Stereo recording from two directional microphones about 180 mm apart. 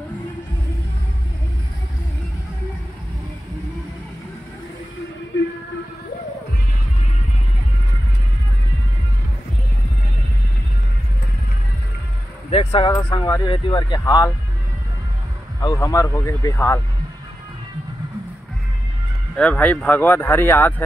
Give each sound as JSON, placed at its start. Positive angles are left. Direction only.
{"t": 12.4, "sound": "a sound", "side_deg": 30}
{"t": 12.9, "sound": "speech", "side_deg": 20}
{"t": 15.6, "sound": "speech", "side_deg": 20}
{"t": 19.3, "sound": "speech", "side_deg": 5}